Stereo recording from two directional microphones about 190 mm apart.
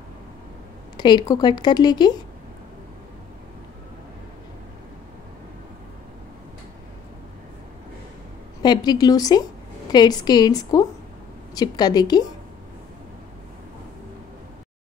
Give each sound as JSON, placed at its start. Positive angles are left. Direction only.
{"t": 0.9, "sound": "speech", "side_deg": 20}
{"t": 8.6, "sound": "speech", "side_deg": 20}